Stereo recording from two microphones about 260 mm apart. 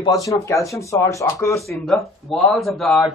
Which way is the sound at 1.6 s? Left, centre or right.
Centre.